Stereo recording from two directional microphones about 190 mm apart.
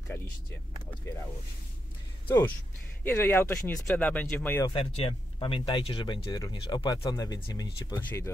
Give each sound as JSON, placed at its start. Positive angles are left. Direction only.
{"t": 0.1, "sound": "speech", "side_deg": 15}
{"t": 3.0, "sound": "speech", "side_deg": 10}
{"t": 4.6, "sound": "speech", "side_deg": 30}